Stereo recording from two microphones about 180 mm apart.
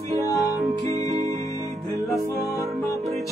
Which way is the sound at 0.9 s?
35° right (ahead or behind).